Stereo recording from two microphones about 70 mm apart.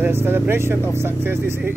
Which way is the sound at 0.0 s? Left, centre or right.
Right.